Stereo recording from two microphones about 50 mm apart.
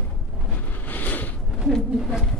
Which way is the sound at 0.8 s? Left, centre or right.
Left.